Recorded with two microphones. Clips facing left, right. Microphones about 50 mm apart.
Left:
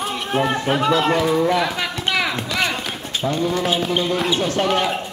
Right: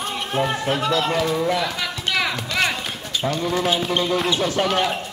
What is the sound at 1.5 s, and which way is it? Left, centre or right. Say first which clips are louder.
Speech: left 3 dB; centre.